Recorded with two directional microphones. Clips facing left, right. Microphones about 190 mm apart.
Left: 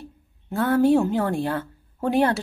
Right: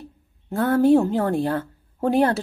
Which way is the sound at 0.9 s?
40° right (ahead or behind).